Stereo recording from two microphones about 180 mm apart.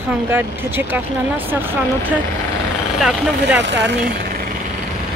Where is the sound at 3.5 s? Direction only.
80° right.